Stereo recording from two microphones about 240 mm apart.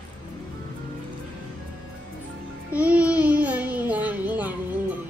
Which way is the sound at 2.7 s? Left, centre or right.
Centre.